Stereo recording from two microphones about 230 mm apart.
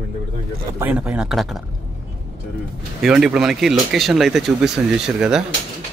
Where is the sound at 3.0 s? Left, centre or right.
Centre.